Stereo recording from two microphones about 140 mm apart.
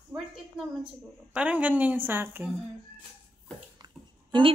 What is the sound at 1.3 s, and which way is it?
A woman's voice, 10° right (ahead or behind).